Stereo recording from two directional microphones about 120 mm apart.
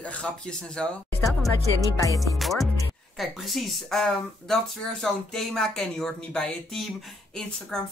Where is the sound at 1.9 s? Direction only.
30° left (ahead or behind).